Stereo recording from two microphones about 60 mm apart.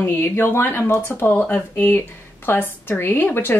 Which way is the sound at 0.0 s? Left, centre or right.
Left.